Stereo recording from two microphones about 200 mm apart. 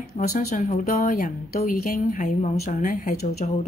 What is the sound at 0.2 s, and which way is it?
Speech, 35° left (ahead or behind).